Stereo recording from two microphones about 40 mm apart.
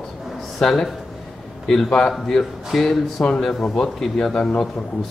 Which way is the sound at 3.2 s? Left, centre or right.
Centre.